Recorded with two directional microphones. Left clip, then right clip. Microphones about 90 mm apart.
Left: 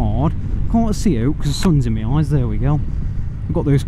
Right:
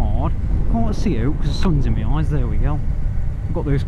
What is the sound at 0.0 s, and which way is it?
Vehicle, 25° left (ahead or behind).